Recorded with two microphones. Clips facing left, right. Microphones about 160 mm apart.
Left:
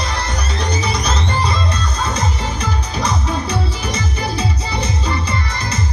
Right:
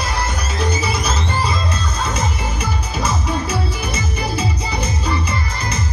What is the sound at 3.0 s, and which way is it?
Music, 5° right (ahead or behind).